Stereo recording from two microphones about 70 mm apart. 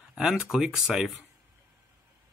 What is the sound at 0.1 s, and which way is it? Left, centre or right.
Speech, centre.